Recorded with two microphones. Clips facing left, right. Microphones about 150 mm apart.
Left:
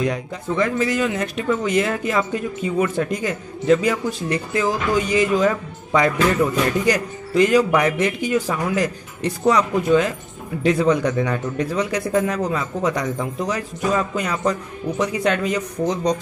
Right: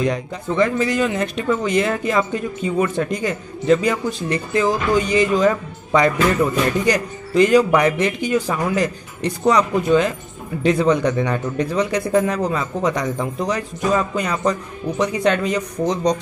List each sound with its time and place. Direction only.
0.0 s speech: 5° left (ahead or behind)